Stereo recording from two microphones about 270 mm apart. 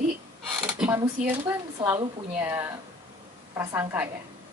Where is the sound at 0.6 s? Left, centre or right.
Centre.